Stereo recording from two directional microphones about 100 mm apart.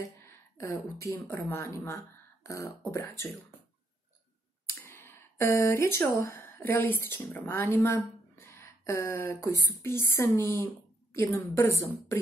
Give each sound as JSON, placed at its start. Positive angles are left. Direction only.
{"t": 0.3, "sound": "speech", "side_deg": 25}
{"t": 4.6, "sound": "speech", "side_deg": 20}